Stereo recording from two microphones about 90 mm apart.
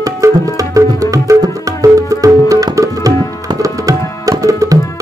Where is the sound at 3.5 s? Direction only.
40° right (ahead or behind).